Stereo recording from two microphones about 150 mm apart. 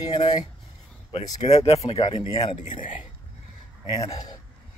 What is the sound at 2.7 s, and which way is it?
Speech, 60° left (ahead or behind).